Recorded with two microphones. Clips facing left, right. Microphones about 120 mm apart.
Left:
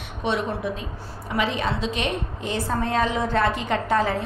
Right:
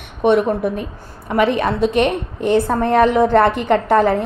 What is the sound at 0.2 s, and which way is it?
A woman's voice, 55° right (ahead or behind).